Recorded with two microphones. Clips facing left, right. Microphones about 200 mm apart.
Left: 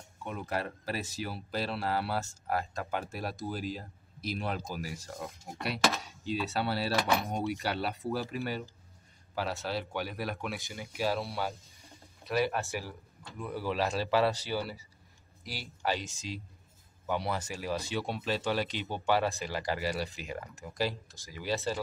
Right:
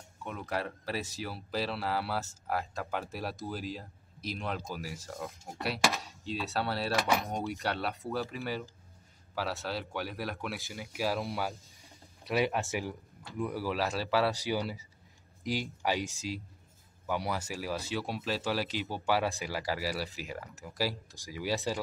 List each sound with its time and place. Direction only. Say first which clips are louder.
0.2 s speech: left 1 dB; centre (ahead or behind)
14.3 s speech: right 2 dB; 15° right (ahead or behind)